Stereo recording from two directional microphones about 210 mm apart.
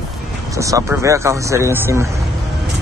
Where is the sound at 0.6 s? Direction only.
15° right (ahead or behind).